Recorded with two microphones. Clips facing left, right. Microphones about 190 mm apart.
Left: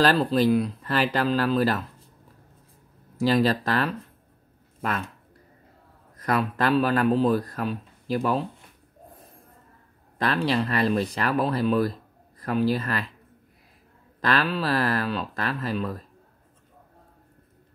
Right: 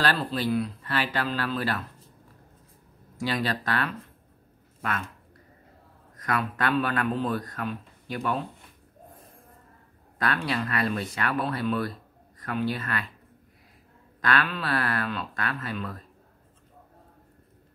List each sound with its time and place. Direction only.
0.0 s a man's voice: 40° left (ahead or behind)
3.2 s a man's voice: 35° left (ahead or behind)
6.2 s a man's voice: 35° left (ahead or behind)
10.1 s a man's voice: 25° left (ahead or behind)
14.2 s a man's voice: 35° left (ahead or behind)